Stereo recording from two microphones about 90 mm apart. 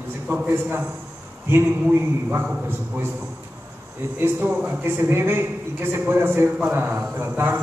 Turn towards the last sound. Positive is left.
turn(degrees=-20)  # may be behind; listen again after turning